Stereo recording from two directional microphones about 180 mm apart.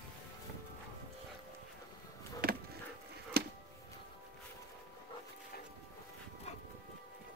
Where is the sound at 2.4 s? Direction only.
55° right (ahead or behind).